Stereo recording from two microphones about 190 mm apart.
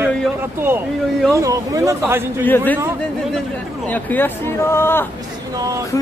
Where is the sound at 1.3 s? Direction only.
15° right (ahead or behind).